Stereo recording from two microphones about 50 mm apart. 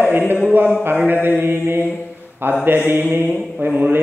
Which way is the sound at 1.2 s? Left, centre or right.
Right.